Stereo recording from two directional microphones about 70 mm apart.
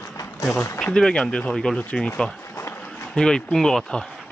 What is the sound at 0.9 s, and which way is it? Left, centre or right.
Speech, centre.